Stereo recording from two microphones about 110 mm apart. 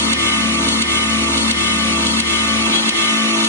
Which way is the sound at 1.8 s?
20° left (ahead or behind).